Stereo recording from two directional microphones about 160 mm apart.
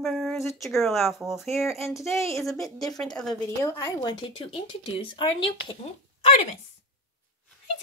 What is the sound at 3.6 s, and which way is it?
Speech, 20° left (ahead or behind).